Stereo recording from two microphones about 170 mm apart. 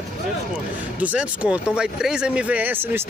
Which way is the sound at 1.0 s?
5° right (ahead or behind).